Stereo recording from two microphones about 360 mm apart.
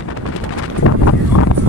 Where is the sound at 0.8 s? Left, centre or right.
Left.